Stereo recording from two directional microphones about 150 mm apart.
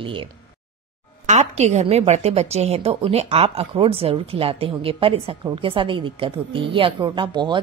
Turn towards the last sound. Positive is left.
turn(degrees=-30)  # may be behind; listen again after turning